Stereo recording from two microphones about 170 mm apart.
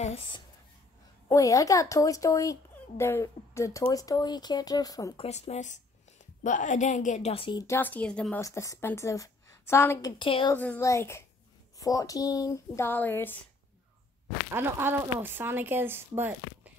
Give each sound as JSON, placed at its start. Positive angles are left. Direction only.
{"t": 0.0, "sound": "speech", "side_deg": 35}
{"t": 1.3, "sound": "speech", "side_deg": 20}
{"t": 5.2, "sound": "a woman's voice", "side_deg": 40}
{"t": 7.6, "sound": "a woman's voice", "side_deg": 15}
{"t": 8.4, "sound": "a woman's voice", "side_deg": 20}
{"t": 10.1, "sound": "speech", "side_deg": 30}
{"t": 10.5, "sound": "a woman's voice", "side_deg": 10}
{"t": 14.5, "sound": "speech", "side_deg": -15}